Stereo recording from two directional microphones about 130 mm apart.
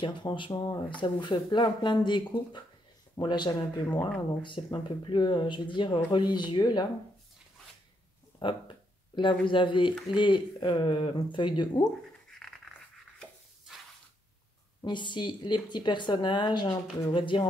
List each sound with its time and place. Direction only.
0.0 s speech: 40° left (ahead or behind)
8.4 s speech: 40° left (ahead or behind)
12.3 s a sound: centre (ahead or behind)
14.9 s speech: 35° left (ahead or behind)